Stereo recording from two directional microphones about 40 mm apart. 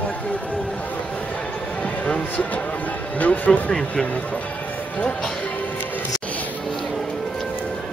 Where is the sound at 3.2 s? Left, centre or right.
Left.